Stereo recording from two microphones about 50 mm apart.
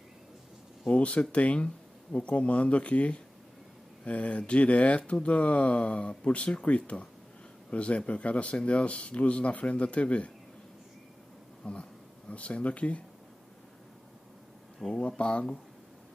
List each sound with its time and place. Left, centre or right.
0.8 s speech: left
11.6 s speech: left
15.0 s speech: centre